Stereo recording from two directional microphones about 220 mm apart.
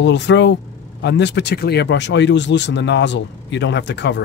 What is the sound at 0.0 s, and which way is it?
Speech, 55° left (ahead or behind).